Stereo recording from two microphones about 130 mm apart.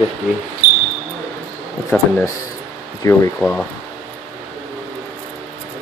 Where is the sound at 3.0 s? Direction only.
25° left (ahead or behind).